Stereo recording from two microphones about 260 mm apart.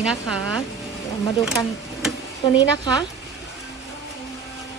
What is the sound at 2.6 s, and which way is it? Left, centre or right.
Speech, centre.